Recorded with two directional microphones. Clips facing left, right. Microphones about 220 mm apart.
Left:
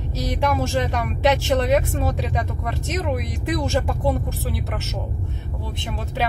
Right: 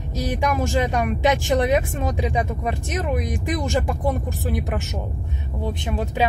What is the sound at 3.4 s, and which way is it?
Speech, 15° right (ahead or behind).